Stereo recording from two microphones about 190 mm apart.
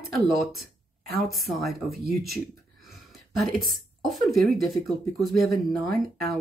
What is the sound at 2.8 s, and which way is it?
A woman's voice, centre (ahead or behind).